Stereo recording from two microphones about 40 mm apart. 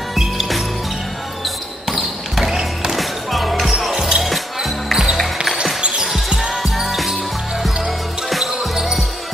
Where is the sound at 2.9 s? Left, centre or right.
Centre.